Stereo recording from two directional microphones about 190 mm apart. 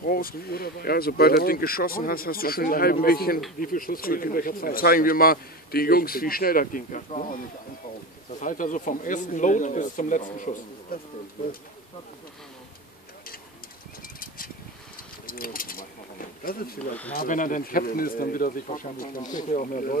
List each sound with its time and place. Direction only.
0.0 s speech: 50° left (ahead or behind)
8.4 s speech: 45° left (ahead or behind)
15.2 s a sound: 50° left (ahead or behind)
17.1 s speech: 45° left (ahead or behind)